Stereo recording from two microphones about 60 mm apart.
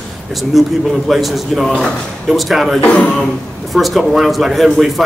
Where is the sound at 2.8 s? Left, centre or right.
Left.